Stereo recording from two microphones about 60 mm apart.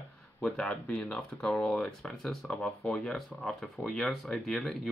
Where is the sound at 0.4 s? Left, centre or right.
Centre.